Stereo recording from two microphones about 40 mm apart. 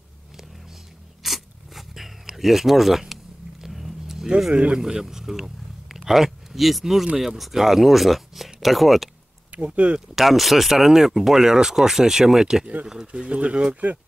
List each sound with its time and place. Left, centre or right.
1.2 s biting: centre
3.6 s vehicle: centre
4.7 s a man's voice: centre
9.5 s speech: right
9.9 s speech: centre; by 13.9 s right